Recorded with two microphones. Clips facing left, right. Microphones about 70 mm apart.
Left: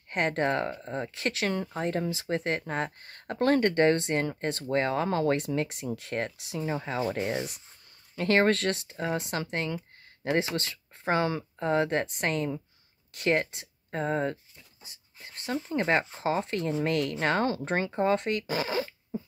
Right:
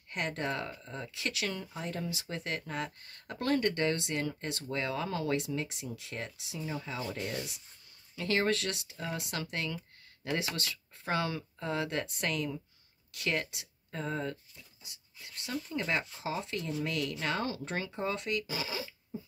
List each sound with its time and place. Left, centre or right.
0.1 s speech: left